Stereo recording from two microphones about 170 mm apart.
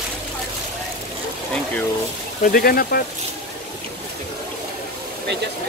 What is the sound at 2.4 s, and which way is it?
Speech, 60° left (ahead or behind).